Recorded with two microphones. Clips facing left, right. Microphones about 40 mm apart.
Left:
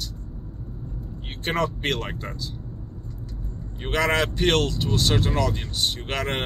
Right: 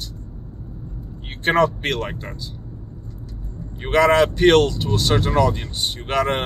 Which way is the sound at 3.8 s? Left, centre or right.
Centre.